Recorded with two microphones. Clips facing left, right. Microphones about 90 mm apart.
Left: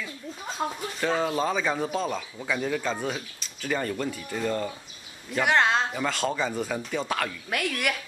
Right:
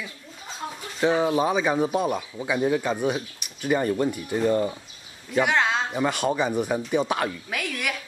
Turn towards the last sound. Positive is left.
turn(degrees=0)  # may be behind; listen again after turning